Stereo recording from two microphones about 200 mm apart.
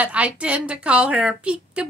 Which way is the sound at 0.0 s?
5° right (ahead or behind).